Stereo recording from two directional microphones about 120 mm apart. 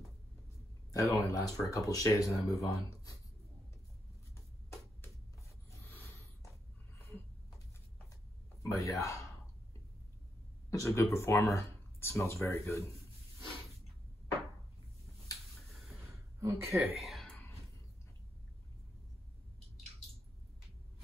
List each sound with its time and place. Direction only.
0.9 s speech: 25° left (ahead or behind)
5.7 s a sound: 20° left (ahead or behind)
8.7 s speech: 25° left (ahead or behind)
10.7 s speech: 25° left (ahead or behind)
16.3 s speech: 25° right (ahead or behind)
16.9 s a sound: centre (ahead or behind)